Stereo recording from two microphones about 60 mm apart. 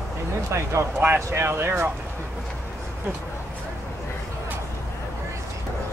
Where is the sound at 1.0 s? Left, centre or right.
Right.